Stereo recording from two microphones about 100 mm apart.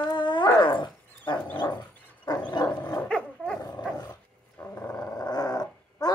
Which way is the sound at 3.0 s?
10° left (ahead or behind).